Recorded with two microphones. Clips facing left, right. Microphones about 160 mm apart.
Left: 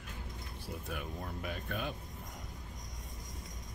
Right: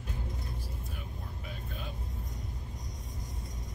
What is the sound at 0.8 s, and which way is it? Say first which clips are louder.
Vehicle: left 4 dB; 70° left (ahead or behind).